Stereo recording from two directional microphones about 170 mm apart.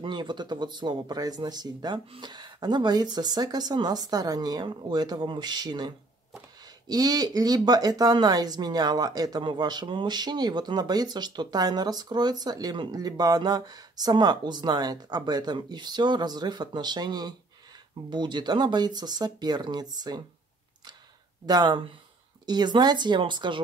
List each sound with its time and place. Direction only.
0.0 s speech: 25° right (ahead or behind)
21.5 s speech: 25° right (ahead or behind)